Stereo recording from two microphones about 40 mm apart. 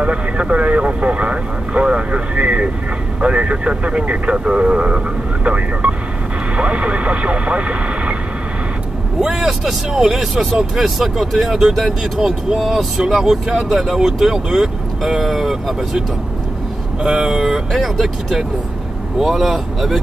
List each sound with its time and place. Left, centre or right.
0.0 s speech: right
9.2 s speech: centre
17.2 s speech: centre